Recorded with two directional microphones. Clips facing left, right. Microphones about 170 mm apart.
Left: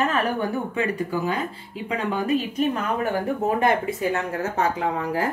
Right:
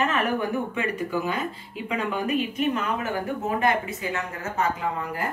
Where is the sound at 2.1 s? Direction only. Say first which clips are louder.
Left 4 dB; 35° left (ahead or behind).